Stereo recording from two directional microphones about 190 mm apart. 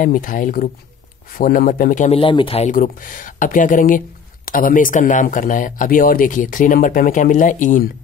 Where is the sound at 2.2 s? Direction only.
25° left (ahead or behind).